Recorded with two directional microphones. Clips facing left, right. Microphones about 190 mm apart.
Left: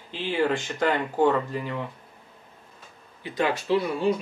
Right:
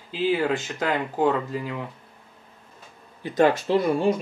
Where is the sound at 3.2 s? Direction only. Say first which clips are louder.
Right 6 dB; 45° right (ahead or behind).